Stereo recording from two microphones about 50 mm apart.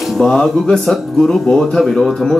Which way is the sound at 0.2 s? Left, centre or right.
Centre.